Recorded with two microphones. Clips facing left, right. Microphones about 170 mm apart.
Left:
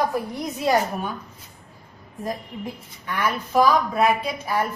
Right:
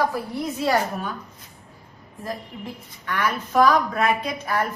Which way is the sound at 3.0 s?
10° left (ahead or behind).